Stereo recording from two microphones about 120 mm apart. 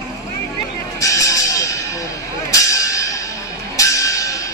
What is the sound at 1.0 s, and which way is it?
Music, 25° left (ahead or behind).